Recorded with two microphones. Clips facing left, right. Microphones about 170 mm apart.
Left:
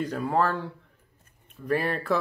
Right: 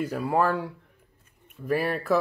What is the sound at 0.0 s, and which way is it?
Speech, 10° right (ahead or behind).